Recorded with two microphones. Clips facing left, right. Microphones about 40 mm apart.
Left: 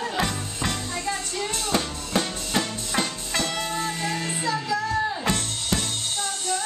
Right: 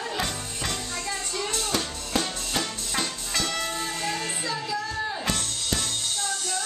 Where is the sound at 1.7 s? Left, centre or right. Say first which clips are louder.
Left 4 dB; centre.